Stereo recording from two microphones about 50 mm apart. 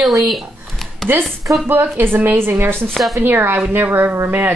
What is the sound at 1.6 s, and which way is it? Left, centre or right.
A woman's voice, right.